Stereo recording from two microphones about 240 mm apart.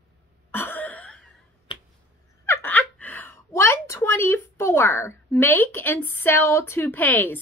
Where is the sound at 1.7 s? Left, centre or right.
Left.